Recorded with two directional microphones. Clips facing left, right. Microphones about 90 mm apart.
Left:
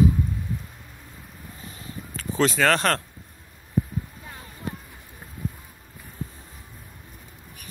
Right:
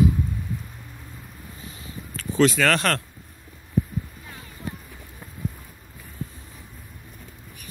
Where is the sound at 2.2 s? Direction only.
30° left (ahead or behind).